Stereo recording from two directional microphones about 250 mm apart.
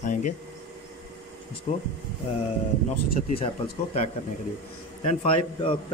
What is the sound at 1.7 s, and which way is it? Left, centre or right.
Speech, left.